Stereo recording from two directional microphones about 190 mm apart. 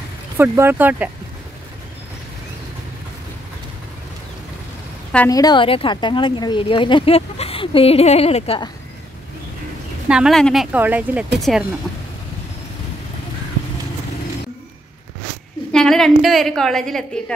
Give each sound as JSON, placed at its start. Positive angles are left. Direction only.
{"t": 0.4, "sound": "speech", "side_deg": -10}
{"t": 5.3, "sound": "speech", "side_deg": 20}
{"t": 10.0, "sound": "a woman's voice", "side_deg": -5}
{"t": 15.7, "sound": "a woman's voice", "side_deg": 5}